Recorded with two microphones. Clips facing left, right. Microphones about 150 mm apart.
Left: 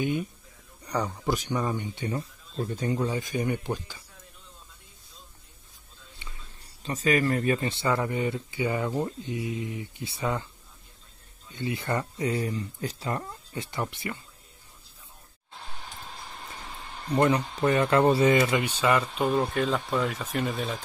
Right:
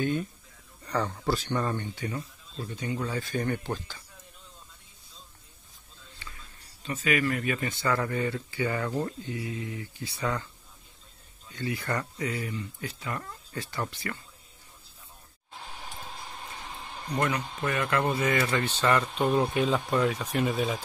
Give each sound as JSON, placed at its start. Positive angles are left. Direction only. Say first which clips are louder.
{"t": 0.0, "sound": "speech", "louder": "even", "side_deg": 10}
{"t": 2.0, "sound": "speech", "louder": "left 3 dB", "side_deg": 30}
{"t": 2.5, "sound": "speech", "louder": "left 5 dB", "side_deg": 45}
{"t": 3.1, "sound": "speech", "louder": "left 2 dB", "side_deg": 15}
{"t": 6.8, "sound": "speech", "louder": "left 3 dB", "side_deg": 35}
{"t": 11.5, "sound": "speech", "louder": "left 2 dB", "side_deg": 25}
{"t": 13.2, "sound": "speech", "louder": "left 2 dB", "side_deg": 20}
{"t": 17.1, "sound": "speech", "louder": "left 6 dB", "side_deg": 30}
{"t": 18.4, "sound": "speech", "louder": "left 2 dB", "side_deg": 15}